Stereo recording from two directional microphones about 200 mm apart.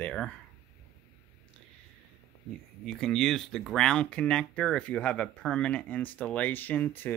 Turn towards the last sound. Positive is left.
turn(degrees=10)  # may be behind; listen again after turning